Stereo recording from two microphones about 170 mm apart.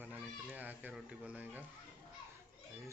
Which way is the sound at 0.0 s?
5° right (ahead or behind).